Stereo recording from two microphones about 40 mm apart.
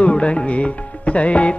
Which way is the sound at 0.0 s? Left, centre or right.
Left.